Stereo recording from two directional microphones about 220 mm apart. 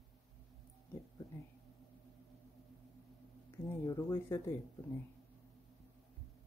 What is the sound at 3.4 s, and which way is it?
Speech, 15° left (ahead or behind).